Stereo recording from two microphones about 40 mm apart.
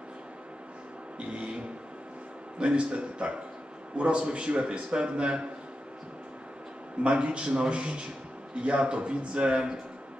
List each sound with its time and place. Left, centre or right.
1.2 s a man's voice: right
2.6 s a man's voice: right
7.0 s a man's voice: right